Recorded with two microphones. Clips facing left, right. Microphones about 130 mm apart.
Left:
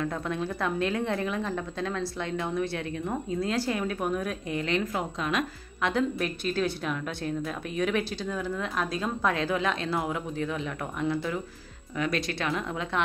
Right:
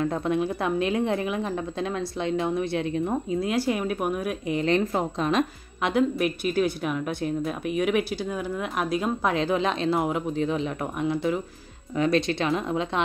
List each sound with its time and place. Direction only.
0.0 s speech: 25° right (ahead or behind)
4.6 s speech: 35° right (ahead or behind)
5.8 s speech: 15° right (ahead or behind)